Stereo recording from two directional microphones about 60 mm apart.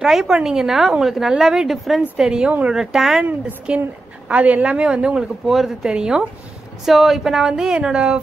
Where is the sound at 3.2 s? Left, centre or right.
Centre.